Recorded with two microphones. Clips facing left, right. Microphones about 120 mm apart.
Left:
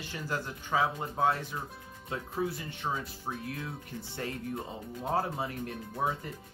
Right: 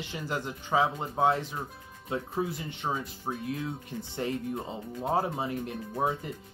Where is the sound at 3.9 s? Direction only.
15° right (ahead or behind).